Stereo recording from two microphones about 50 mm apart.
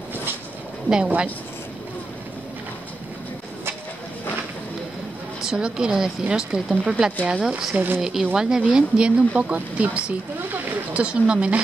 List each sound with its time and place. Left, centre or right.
0.8 s speech: centre
5.4 s speech: centre
7.4 s speech: centre
7.7 s speech: right
8.0 s speech: centre; by 11.6 s right